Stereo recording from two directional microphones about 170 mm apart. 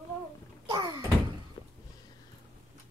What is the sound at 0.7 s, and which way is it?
Door, 25° right (ahead or behind).